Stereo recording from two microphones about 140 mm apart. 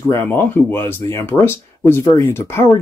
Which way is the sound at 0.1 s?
15° left (ahead or behind).